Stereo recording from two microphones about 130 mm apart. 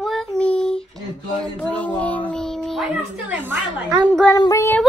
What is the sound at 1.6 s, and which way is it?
Music, 10° left (ahead or behind).